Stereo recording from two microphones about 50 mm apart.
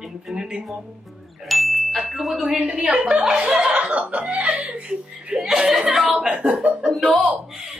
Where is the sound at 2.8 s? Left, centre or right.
Right.